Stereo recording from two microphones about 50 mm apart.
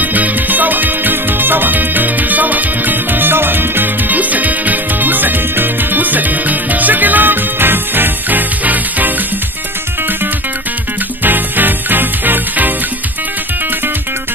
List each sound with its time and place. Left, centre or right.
0.0 s music: right
11.2 s music: right